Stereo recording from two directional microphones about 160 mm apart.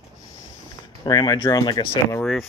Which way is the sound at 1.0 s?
25° left (ahead or behind).